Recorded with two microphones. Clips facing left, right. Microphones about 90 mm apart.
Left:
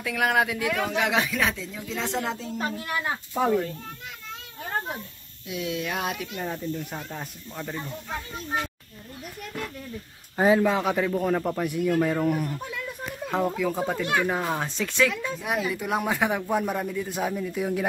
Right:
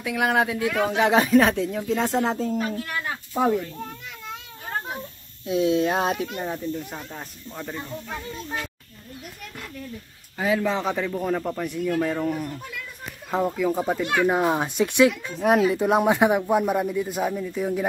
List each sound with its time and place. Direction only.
0.0 s speech: 20° right (ahead or behind); by 1.6 s 40° right (ahead or behind)
1.6 s speech: 55° right (ahead or behind)
2.8 s speech: 20° left (ahead or behind)
5.5 s speech: 30° right (ahead or behind)
6.4 s a man's voice: 5° right (ahead or behind)
10.3 s a man's voice: 35° left (ahead or behind)
10.6 s a man's voice: 10° left (ahead or behind)
14.2 s speech: 20° right (ahead or behind)
15.3 s speech: 45° right (ahead or behind)
15.7 s speech: 25° right (ahead or behind)
16.3 s a man's voice: 10° right (ahead or behind)